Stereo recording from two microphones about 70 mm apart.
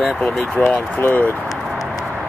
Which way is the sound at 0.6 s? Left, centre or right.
Left.